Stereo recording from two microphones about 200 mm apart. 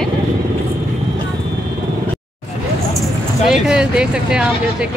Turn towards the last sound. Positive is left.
turn(degrees=-5)  # may be behind; listen again after turning